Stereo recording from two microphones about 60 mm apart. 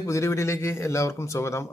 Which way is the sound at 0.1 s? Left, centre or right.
Left.